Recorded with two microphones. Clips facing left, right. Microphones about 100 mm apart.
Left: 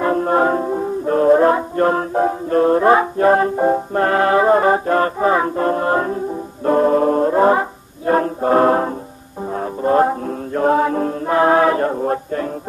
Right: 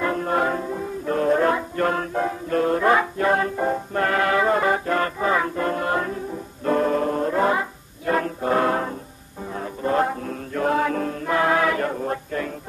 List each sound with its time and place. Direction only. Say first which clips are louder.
0.0 s music: left 6 dB; 35° left (ahead or behind)